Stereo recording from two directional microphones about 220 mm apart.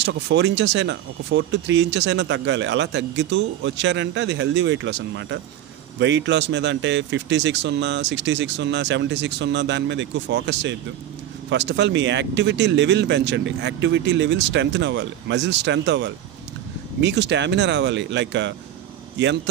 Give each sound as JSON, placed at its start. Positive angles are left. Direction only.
{"t": 0.0, "sound": "speech", "side_deg": -55}